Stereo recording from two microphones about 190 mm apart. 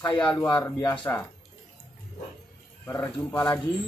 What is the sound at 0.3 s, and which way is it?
Speech, 10° left (ahead or behind).